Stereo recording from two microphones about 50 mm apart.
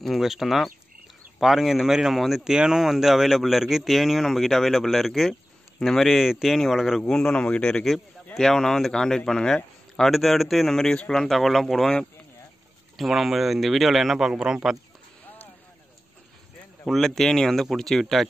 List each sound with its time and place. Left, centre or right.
0.0 s speech: centre
7.0 s speech: centre
7.3 s speech: left
7.9 s speech: centre
8.4 s speech: centre
9.9 s speech: centre
12.9 s speech: centre
16.8 s speech: centre